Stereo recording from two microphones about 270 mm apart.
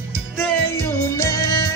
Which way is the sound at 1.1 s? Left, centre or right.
Centre.